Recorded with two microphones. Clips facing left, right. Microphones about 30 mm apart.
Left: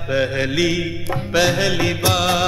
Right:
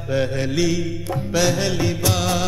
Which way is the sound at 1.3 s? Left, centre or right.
Left.